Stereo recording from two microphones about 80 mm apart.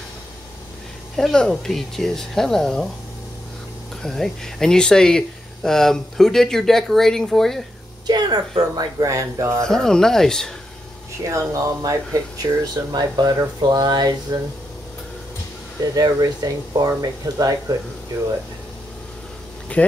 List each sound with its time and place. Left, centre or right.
1.1 s speech: centre
4.0 s speech: centre
8.1 s speech: right
9.7 s speech: centre
11.2 s speech: right
15.8 s speech: right
19.7 s speech: centre